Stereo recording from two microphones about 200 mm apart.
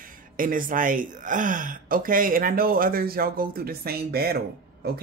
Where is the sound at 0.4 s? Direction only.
45° right (ahead or behind).